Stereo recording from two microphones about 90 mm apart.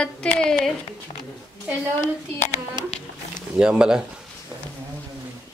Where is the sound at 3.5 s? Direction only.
10° right (ahead or behind).